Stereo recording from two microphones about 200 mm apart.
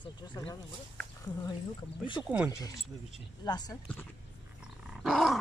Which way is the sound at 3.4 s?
20° left (ahead or behind).